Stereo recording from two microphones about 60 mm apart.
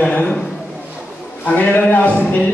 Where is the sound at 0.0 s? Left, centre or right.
Left.